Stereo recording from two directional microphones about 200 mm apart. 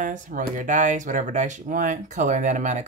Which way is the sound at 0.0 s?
40° right (ahead or behind).